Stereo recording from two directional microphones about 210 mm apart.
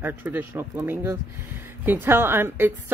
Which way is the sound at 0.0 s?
10° right (ahead or behind).